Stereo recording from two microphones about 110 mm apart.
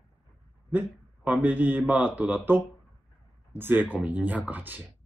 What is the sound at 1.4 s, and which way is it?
Speech, 15° right (ahead or behind).